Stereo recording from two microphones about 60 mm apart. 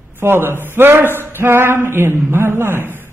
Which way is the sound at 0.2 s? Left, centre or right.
Right.